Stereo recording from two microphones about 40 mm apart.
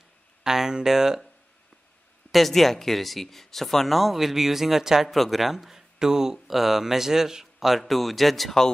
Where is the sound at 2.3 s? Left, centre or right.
Centre.